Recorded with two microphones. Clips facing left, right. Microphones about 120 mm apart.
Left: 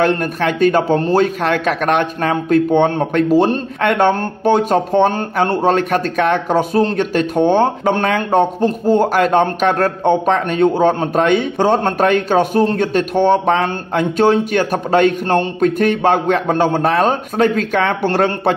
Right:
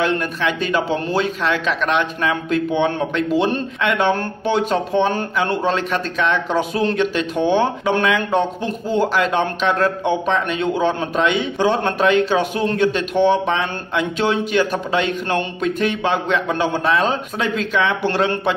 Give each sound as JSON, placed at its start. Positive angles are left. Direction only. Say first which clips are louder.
{"t": 0.0, "sound": "speech", "louder": "left 4 dB", "side_deg": 50}